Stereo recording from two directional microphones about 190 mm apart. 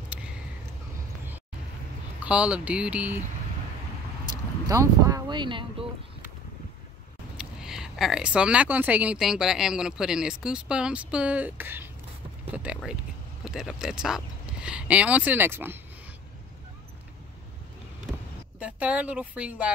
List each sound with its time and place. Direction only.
2.2 s speech: 5° right (ahead or behind)
4.6 s speech: 15° right (ahead or behind)
7.3 s speech: 5° right (ahead or behind)
18.6 s speech: 5° right (ahead or behind)